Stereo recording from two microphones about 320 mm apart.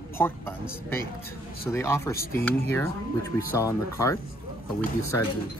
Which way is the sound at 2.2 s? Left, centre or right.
Left.